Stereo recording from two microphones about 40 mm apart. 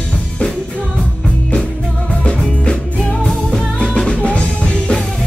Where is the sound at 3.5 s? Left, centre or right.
Centre.